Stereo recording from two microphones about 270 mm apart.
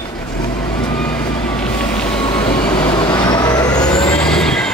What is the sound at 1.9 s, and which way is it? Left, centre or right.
Vehicle, centre.